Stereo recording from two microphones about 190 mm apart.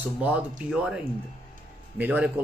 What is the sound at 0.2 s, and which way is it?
Speech, 5° right (ahead or behind).